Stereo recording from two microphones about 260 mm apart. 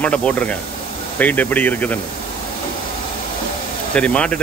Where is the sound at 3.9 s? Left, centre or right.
Centre.